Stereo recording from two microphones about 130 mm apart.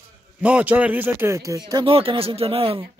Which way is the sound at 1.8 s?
45° right (ahead or behind).